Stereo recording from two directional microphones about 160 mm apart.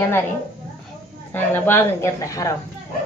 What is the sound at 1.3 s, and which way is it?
Speech, 15° left (ahead or behind).